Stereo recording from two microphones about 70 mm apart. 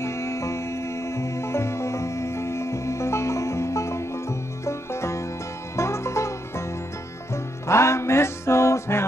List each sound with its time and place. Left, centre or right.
0.0 s music: left
7.6 s music: left